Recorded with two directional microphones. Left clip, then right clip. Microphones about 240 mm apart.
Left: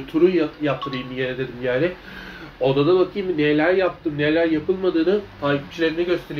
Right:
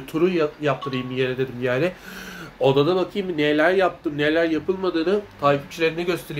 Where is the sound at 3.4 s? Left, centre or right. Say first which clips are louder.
Even; right.